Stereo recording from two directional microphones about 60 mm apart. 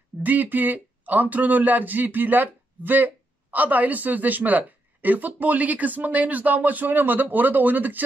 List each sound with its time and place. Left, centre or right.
0.2 s a man's voice: right